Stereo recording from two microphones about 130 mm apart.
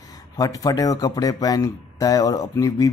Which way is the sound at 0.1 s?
30° left (ahead or behind).